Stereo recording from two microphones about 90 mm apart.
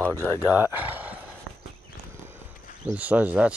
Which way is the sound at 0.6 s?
20° right (ahead or behind).